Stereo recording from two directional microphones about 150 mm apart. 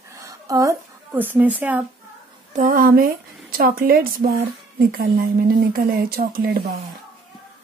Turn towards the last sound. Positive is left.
turn(degrees=-90)